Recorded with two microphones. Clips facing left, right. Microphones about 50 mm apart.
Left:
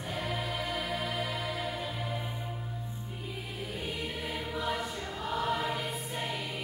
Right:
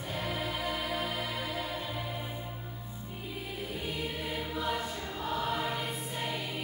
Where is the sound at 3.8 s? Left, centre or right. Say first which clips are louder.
Right 1 dB; centre.